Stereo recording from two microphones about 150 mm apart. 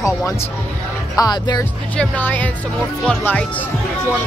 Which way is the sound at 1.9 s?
10° left (ahead or behind).